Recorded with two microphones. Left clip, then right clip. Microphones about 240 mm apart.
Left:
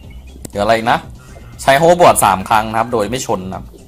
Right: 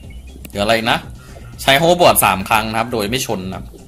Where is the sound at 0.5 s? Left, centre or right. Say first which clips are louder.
Left 3 dB; centre.